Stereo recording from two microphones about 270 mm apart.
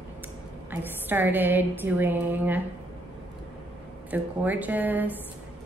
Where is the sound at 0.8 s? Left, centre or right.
Centre.